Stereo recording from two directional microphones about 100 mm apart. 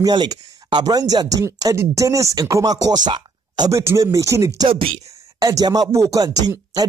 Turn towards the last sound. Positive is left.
turn(degrees=-40)  # may be behind; listen again after turning